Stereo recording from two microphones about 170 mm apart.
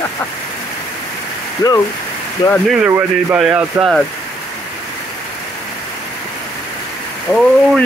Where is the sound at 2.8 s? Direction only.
15° right (ahead or behind).